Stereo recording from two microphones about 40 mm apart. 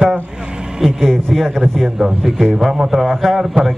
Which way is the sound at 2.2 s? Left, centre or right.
Centre.